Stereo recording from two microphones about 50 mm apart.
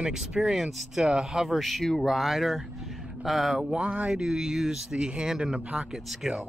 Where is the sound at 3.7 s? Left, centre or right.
Right.